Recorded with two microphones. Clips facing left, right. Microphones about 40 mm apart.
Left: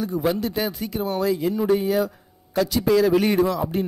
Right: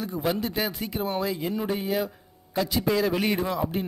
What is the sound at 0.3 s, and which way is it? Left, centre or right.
Speech, right.